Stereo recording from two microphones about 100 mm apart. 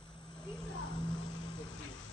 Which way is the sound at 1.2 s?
50° left (ahead or behind).